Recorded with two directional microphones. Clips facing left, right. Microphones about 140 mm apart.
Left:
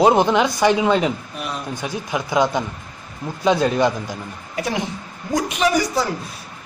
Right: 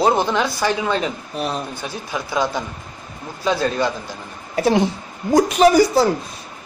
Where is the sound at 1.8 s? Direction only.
15° left (ahead or behind).